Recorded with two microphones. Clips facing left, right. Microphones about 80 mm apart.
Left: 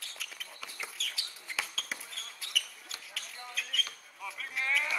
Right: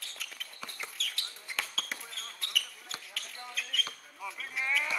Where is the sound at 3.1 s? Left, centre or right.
Centre.